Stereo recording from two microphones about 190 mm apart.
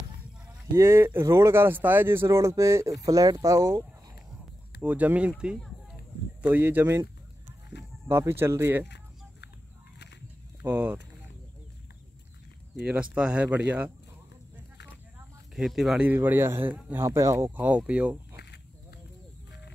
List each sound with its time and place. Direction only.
0.7 s a man's voice: 15° right (ahead or behind)
4.8 s a man's voice: 10° right (ahead or behind)
8.8 s chicken: 65° left (ahead or behind)
10.6 s speech: 10° right (ahead or behind)
13.1 s a man's voice: 5° right (ahead or behind)
15.5 s a man's voice: centre (ahead or behind)
18.3 s a sound: 60° left (ahead or behind)